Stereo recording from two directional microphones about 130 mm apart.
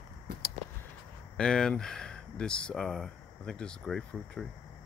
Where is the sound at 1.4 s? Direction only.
5° left (ahead or behind).